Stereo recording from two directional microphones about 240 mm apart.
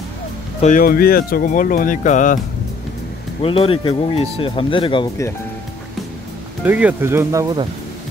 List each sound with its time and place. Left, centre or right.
0.6 s speech: left
3.4 s speech: left
6.6 s speech: centre